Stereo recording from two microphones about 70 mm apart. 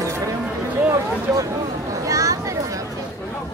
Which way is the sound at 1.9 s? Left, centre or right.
Right.